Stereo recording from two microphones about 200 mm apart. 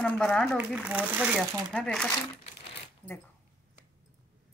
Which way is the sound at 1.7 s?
5° left (ahead or behind).